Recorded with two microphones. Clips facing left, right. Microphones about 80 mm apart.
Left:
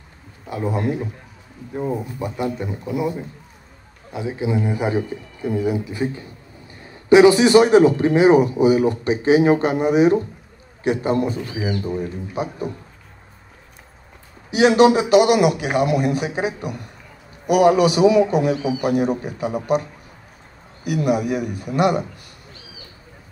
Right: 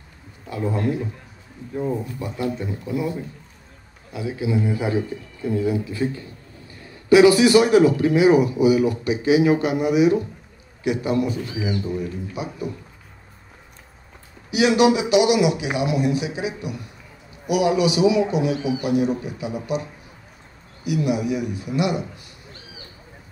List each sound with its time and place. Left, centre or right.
0.5 s a man's voice: centre; by 12.4 s left
14.5 s a man's voice: left